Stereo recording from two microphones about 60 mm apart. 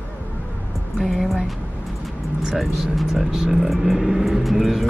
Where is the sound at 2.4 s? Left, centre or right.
Centre.